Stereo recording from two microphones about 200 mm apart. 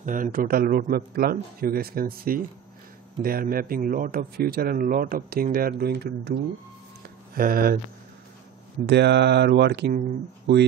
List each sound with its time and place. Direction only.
0.0 s speech: 40° right (ahead or behind)
7.3 s speech: 45° right (ahead or behind)
8.8 s speech: 60° right (ahead or behind)